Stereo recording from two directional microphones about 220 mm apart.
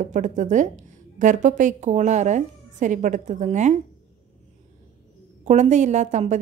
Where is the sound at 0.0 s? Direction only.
35° right (ahead or behind).